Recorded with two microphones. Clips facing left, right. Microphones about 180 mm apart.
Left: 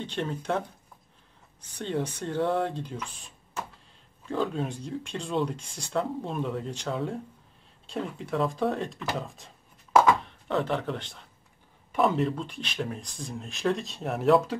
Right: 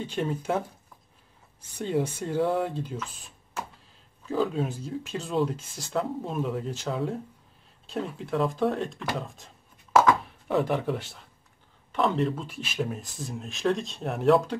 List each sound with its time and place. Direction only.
0.0 s speech: 5° right (ahead or behind)
1.8 s speech: 5° right (ahead or behind)
3.2 s a sound: centre (ahead or behind)
4.3 s speech: centre (ahead or behind)